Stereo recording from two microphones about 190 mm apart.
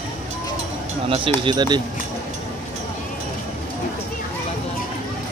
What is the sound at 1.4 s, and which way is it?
Speech, 20° right (ahead or behind).